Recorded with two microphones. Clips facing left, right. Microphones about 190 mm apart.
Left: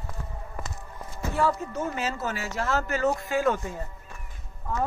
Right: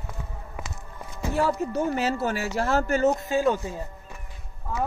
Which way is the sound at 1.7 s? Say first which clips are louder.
Right 5 dB; 35° right (ahead or behind).